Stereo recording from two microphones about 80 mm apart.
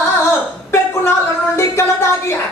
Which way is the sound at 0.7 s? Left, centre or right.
Left.